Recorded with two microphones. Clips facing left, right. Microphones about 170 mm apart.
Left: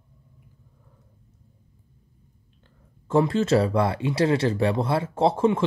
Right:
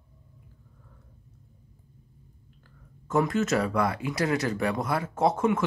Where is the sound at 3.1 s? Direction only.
30° left (ahead or behind).